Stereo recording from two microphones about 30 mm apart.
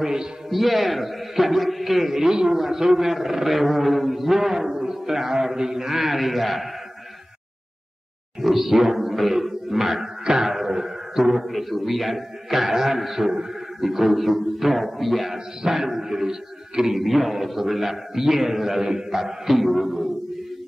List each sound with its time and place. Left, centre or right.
0.0 s a man's voice: right
0.5 s a man's voice: centre
2.2 s a man's voice: right; by 6.7 s centre
8.4 s a sound: centre
10.2 s music: centre
11.5 s a man's voice: centre
15.3 s a man's voice: centre
17.0 s a man's voice: centre
19.5 s a man's voice: centre